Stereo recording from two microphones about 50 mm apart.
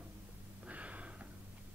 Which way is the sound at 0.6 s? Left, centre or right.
Right.